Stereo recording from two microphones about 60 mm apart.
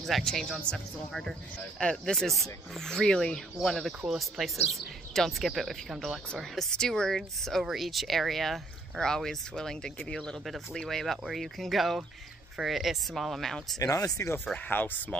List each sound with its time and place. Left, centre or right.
0.2 s speech: centre
1.8 s speech: centre
10.4 s speech: centre
13.7 s speech: left
14.7 s speech: left